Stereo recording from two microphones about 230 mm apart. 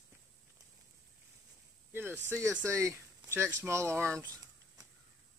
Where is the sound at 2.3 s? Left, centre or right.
Centre.